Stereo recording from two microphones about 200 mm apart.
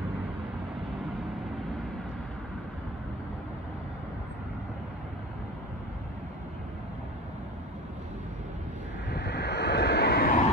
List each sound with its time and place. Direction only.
9.1 s vehicle: 55° left (ahead or behind)